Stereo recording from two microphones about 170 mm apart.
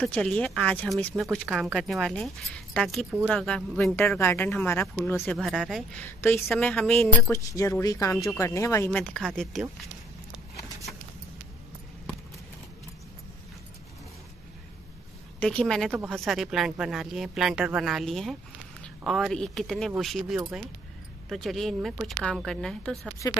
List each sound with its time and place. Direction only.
0.0 s speech: 5° left (ahead or behind)
5.4 s speech: centre (ahead or behind)
15.4 s speech: 5° left (ahead or behind)